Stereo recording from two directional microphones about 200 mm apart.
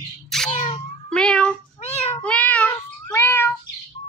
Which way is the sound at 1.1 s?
5° left (ahead or behind).